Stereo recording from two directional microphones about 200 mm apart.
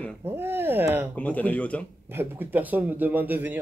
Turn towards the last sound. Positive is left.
turn(degrees=-10)  # may be behind; listen again after turning